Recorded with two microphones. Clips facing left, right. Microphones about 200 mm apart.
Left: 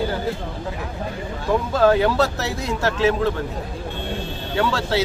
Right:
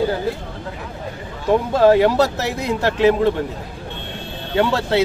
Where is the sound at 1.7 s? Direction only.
30° right (ahead or behind).